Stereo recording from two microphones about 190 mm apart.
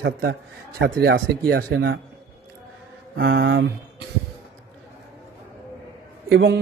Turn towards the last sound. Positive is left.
turn(degrees=-65)  # may be behind; listen again after turning